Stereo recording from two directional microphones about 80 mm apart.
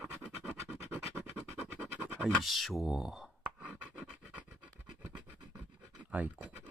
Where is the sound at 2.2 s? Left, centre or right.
Centre.